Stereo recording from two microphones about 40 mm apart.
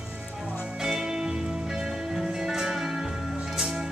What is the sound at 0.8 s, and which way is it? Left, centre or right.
Music, centre.